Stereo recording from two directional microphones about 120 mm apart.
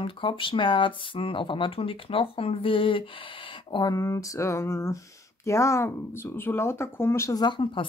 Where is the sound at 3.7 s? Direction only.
30° left (ahead or behind).